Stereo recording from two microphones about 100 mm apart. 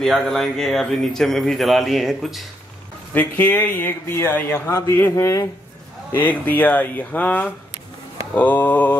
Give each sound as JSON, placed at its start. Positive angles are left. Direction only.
{"t": 0.0, "sound": "speech", "side_deg": 5}
{"t": 3.2, "sound": "speech", "side_deg": 20}
{"t": 6.1, "sound": "speech", "side_deg": 20}